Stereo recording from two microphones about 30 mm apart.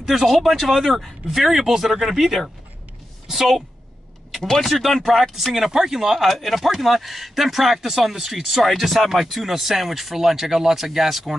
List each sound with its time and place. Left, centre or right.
0.2 s speech: centre
4.4 s speech: centre
4.6 s speech: centre
5.8 s speech: centre
8.6 s speech: centre